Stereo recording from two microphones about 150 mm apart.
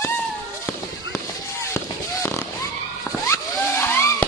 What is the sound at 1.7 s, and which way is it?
Fireworks, 15° left (ahead or behind).